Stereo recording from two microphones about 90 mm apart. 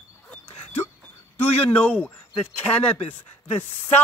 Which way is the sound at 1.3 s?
20° left (ahead or behind).